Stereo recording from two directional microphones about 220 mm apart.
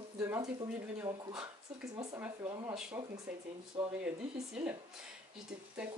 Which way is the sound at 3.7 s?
25° right (ahead or behind).